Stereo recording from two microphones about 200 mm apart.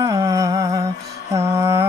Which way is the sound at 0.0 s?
15° right (ahead or behind).